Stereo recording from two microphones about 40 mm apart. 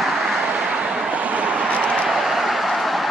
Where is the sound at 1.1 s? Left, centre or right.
Right.